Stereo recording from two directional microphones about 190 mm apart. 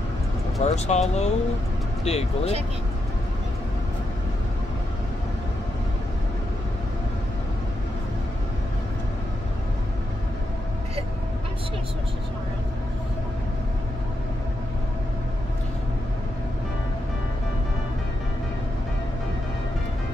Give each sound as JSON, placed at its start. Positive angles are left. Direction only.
{"t": 0.6, "sound": "speech", "side_deg": 35}